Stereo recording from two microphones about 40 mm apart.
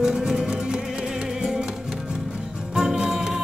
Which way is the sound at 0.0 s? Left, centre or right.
Centre.